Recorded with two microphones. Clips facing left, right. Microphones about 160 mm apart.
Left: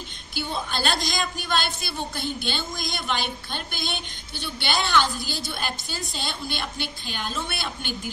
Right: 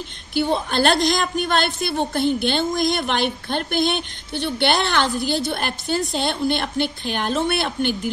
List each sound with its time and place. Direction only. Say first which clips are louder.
0.5 s a woman's voice: right 8 dB; 60° right (ahead or behind)